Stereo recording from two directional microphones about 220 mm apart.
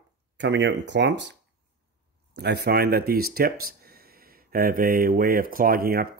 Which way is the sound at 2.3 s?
45° right (ahead or behind).